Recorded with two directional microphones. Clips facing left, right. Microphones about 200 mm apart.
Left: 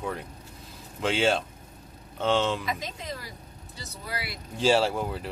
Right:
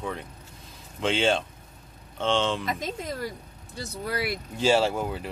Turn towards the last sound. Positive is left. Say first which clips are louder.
# right 1 dB
turn(degrees=0)  # may be behind; listen again after turning